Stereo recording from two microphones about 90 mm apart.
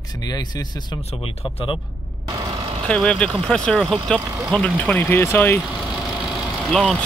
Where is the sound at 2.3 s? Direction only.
45° right (ahead or behind).